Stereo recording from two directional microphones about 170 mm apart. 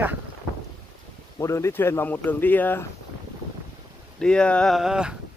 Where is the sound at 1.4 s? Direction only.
15° left (ahead or behind).